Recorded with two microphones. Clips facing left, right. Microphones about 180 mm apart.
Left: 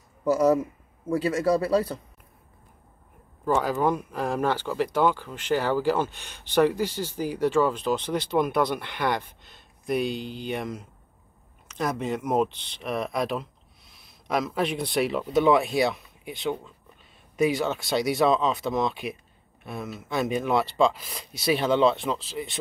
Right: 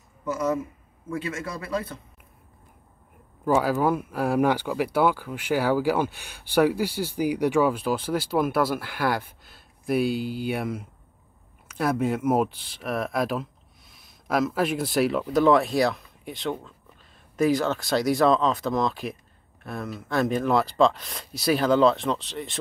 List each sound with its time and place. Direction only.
0.2 s a man's voice: 35° left (ahead or behind)
3.4 s speech: 5° right (ahead or behind)